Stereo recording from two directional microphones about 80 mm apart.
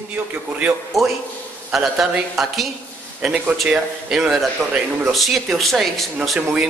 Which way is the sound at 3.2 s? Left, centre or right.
Centre.